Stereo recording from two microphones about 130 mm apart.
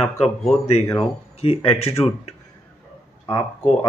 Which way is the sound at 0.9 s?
50° left (ahead or behind).